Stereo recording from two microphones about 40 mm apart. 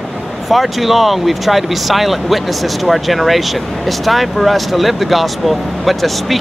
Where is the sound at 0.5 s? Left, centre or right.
Centre.